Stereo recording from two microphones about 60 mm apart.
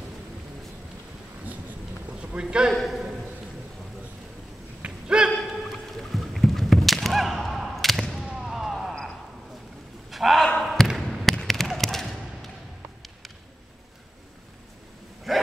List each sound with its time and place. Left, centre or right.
2.1 s clip-clop: centre
2.7 s a man's voice: centre
5.0 s a sound: centre
5.4 s fowl: centre
8.4 s basketball bounce: centre
10.1 s slam: centre
10.6 s basketball bounce: centre
15.3 s a sound: centre